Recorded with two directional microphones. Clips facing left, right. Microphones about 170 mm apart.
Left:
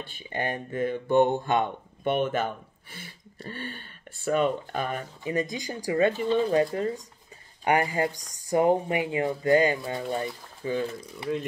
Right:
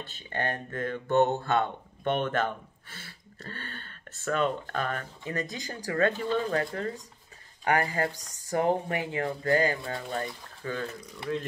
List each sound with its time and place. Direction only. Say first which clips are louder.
0.0 s speech: left 1 dB; 10° left (ahead or behind)
11.1 s speech: left 2 dB; 5° left (ahead or behind)